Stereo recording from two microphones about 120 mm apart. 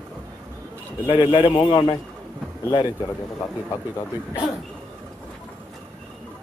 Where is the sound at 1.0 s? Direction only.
45° left (ahead or behind).